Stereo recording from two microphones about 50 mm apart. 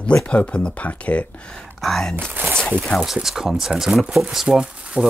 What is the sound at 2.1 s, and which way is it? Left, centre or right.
Speech, right.